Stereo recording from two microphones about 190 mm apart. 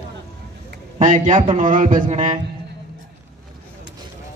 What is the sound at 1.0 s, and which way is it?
A man's voice, 40° right (ahead or behind).